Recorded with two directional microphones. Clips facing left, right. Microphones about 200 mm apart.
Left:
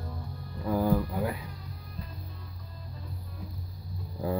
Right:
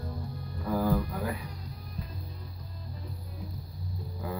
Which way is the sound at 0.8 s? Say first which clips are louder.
Left 2 dB; 15° left (ahead or behind).